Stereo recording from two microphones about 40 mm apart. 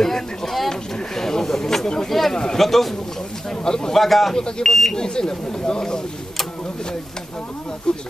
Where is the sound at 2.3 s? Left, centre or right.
Centre.